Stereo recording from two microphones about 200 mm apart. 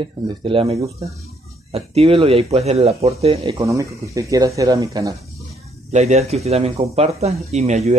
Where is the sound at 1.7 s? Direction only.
30° right (ahead or behind).